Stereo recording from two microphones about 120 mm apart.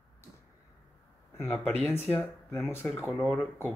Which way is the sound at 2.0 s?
15° left (ahead or behind).